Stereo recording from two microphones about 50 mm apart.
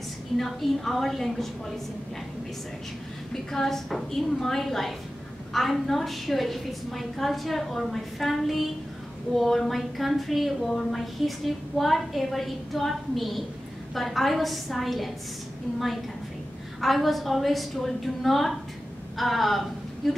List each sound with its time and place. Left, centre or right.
0.4 s a woman's voice: centre
3.5 s a woman's voice: centre
16.8 s a woman's voice: centre